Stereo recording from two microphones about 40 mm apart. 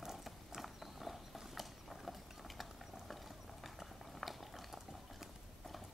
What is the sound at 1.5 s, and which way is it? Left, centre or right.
Mechanisms, centre.